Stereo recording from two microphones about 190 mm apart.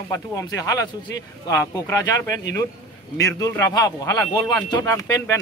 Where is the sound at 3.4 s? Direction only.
15° left (ahead or behind).